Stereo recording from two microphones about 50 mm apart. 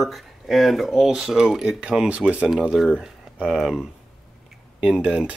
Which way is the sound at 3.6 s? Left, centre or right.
Centre.